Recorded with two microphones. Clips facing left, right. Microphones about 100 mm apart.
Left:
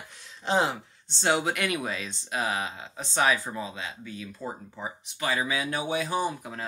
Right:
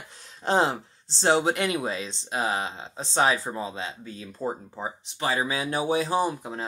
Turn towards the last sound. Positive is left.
turn(degrees=-30)  # may be behind; listen again after turning